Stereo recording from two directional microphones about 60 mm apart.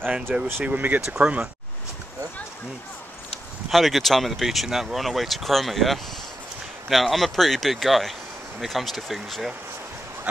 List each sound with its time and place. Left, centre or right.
0.1 s speech: centre
0.7 s speech: right
1.0 s speech: centre
3.7 s speech: centre